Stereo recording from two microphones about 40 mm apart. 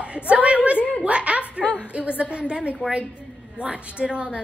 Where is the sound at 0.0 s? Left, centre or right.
Right.